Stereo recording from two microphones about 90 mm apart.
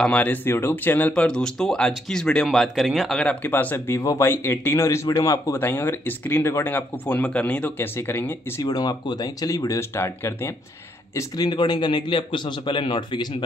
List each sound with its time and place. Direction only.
0.0 s speech: 15° left (ahead or behind)
1.1 s speech: 10° left (ahead or behind)
3.4 s speech: 20° left (ahead or behind)
8.6 s speech: 45° left (ahead or behind); by 10.5 s 30° left (ahead or behind)
11.1 s a man's voice: 45° left (ahead or behind); by 13.4 s 65° left (ahead or behind)